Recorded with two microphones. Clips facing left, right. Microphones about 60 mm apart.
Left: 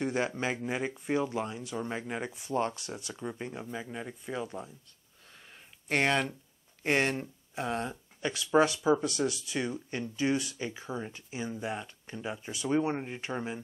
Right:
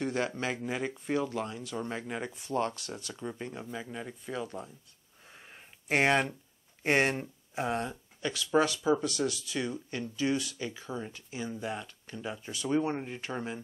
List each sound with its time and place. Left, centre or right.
0.0 s a sound: centre
0.6 s speech: centre
5.9 s speech: centre
8.2 s speech: centre